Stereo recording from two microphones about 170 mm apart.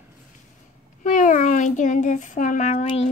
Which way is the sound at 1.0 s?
50° left (ahead or behind).